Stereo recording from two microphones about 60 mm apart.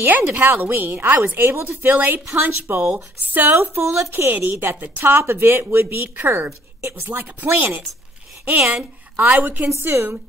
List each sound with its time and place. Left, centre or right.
0.0 s speech: right
3.3 s speech: right
3.8 s speech: right
4.3 s a woman's voice: right
9.7 s speech: right